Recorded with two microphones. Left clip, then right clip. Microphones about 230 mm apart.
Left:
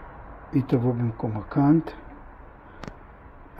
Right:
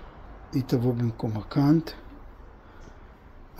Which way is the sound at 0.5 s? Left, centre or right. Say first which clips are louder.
Left 2 dB; centre.